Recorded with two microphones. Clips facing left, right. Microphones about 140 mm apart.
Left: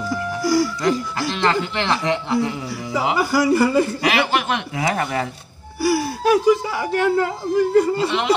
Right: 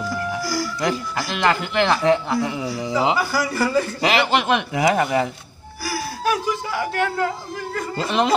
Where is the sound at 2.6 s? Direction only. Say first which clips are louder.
Right 2 dB; 20° right (ahead or behind).